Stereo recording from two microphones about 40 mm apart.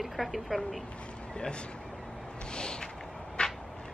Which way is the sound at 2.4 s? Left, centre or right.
Left.